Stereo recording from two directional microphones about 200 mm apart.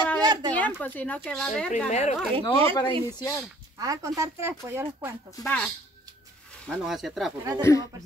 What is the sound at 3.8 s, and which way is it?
Speech, 15° right (ahead or behind).